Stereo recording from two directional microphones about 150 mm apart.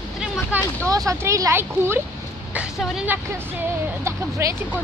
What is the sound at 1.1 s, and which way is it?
Speech, 20° right (ahead or behind).